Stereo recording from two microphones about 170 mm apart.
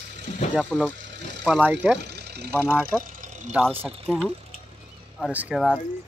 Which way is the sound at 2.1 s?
75° right (ahead or behind).